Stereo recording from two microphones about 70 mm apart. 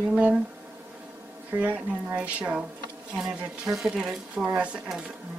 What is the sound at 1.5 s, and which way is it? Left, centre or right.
Speech, right.